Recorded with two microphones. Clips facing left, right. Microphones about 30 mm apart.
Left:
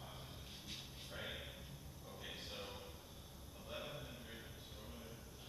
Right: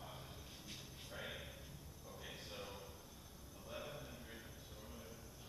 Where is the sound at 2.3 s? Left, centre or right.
Left.